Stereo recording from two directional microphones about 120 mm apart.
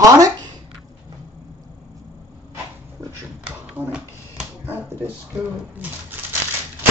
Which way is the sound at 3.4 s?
5° right (ahead or behind).